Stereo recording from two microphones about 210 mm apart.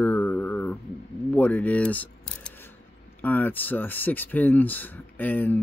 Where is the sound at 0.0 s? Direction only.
10° left (ahead or behind).